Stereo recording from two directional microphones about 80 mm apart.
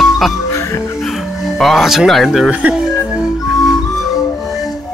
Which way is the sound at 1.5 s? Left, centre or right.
Centre.